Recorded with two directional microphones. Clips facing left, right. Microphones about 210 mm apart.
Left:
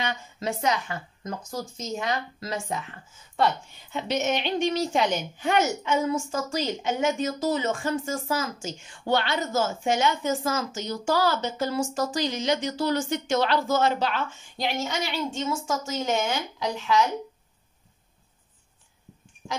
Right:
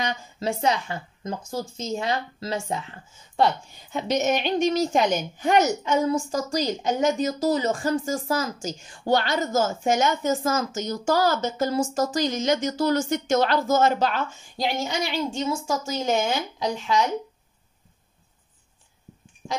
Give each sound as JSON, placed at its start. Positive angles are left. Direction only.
{"t": 0.0, "sound": "speech", "side_deg": -30}
{"t": 3.9, "sound": "a woman's voice", "side_deg": -40}
{"t": 19.4, "sound": "a sound", "side_deg": 0}